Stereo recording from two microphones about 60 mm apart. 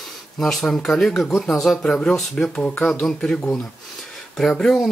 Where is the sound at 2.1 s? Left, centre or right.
Centre.